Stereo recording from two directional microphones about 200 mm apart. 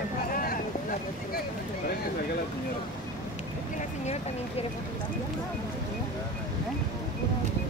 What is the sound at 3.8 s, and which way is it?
Speech, 35° left (ahead or behind).